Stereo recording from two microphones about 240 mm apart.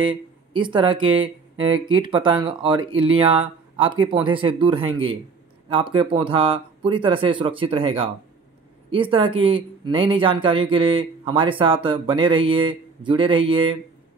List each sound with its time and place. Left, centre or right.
0.0 s speech: right